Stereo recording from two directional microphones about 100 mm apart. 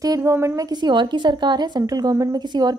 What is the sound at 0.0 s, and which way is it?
Speech, 30° right (ahead or behind).